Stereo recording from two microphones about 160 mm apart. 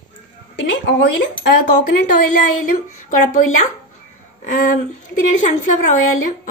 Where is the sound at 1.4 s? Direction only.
85° left; by 3.7 s 50° left (ahead or behind).